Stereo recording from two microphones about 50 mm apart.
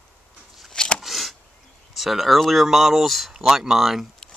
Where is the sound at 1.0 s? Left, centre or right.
Centre.